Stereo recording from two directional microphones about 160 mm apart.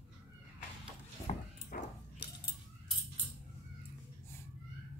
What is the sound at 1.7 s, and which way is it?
Dog, 65° left (ahead or behind).